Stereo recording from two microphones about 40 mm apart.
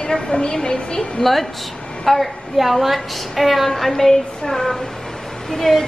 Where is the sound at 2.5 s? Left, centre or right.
Centre.